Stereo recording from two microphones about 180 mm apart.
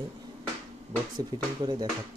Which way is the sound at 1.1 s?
20° right (ahead or behind).